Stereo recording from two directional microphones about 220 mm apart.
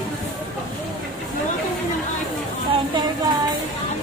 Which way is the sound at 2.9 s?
20° right (ahead or behind).